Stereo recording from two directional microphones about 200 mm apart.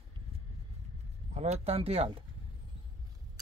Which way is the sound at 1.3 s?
35° right (ahead or behind).